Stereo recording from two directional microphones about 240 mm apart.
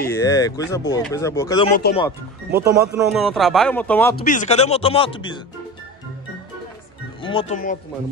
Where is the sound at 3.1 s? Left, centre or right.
Centre.